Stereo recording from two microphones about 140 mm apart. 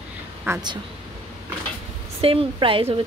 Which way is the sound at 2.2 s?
40° right (ahead or behind).